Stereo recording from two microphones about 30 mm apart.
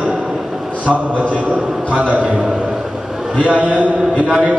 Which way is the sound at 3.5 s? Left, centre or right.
Right.